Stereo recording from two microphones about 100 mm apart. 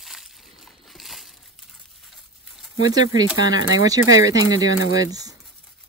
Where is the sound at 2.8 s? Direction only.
40° right (ahead or behind).